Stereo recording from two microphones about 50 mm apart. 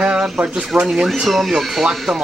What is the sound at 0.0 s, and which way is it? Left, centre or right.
Speech, centre.